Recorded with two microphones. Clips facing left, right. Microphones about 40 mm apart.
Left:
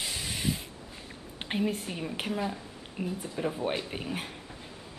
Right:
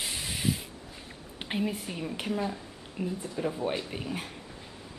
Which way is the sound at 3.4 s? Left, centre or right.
Centre.